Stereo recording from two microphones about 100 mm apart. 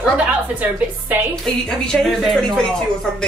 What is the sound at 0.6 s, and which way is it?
Speech, 15° right (ahead or behind).